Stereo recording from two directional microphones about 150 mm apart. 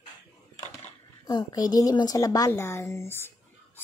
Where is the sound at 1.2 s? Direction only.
25° left (ahead or behind).